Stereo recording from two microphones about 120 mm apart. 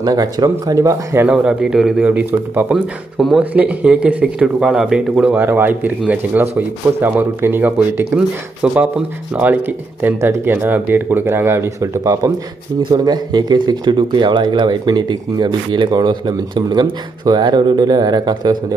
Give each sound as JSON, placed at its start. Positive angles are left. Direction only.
{"t": 0.0, "sound": "speech", "side_deg": -30}
{"t": 1.3, "sound": "speech", "side_deg": -5}
{"t": 3.2, "sound": "speech", "side_deg": 0}
{"t": 3.5, "sound": "speech", "side_deg": -10}